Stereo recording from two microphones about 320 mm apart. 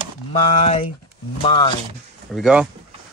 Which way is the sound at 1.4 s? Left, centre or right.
Centre.